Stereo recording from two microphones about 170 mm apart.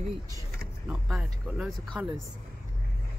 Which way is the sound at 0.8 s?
5° right (ahead or behind).